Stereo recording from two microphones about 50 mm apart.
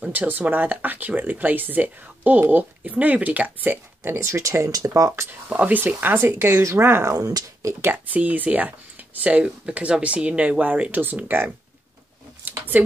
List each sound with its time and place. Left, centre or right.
0.1 s speech: right
4.2 s speech: right
5.5 s speech: right
5.8 s speech: right
6.2 s speech: right
7.9 s speech: right
12.4 s a sound: right